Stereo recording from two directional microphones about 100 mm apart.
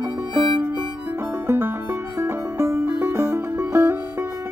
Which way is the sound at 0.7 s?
20° right (ahead or behind).